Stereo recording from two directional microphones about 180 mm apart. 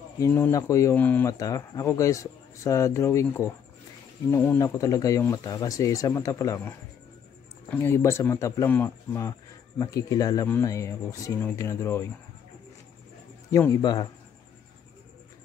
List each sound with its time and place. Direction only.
0.2 s speech: 15° left (ahead or behind)
7.7 s speech: 15° left (ahead or behind)
13.5 s speech: 20° left (ahead or behind)